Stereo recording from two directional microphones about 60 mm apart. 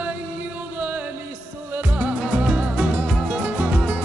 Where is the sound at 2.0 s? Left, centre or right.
Right.